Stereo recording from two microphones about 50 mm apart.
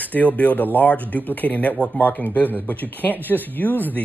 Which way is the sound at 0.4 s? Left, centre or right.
Left.